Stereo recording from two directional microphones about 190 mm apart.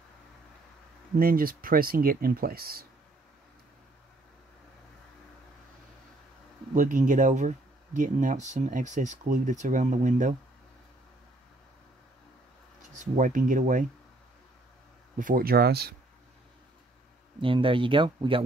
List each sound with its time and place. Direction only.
1.1 s speech: 50° right (ahead or behind)
6.7 s speech: 40° right (ahead or behind)
12.9 s speech: 40° right (ahead or behind)
15.1 s speech: 45° right (ahead or behind)
17.4 s speech: 25° right (ahead or behind)